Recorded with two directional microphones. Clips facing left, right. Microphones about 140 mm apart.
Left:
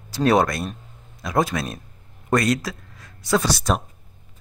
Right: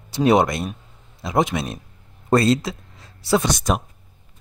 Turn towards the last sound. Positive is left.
turn(degrees=-15)  # may be behind; listen again after turning